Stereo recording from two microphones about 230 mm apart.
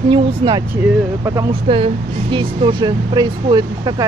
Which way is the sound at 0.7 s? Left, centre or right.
Centre.